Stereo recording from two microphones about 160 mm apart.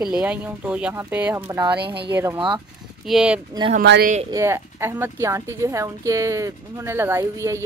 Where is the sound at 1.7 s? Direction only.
90° right.